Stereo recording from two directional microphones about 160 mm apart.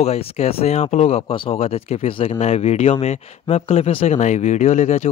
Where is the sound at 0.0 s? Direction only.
40° left (ahead or behind).